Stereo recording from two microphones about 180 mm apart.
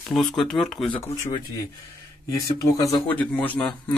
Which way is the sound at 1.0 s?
15° left (ahead or behind).